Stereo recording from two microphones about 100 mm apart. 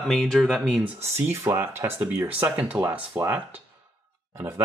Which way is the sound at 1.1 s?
25° right (ahead or behind).